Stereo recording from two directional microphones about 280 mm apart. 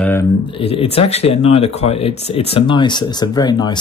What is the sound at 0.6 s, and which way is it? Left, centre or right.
Speech, centre.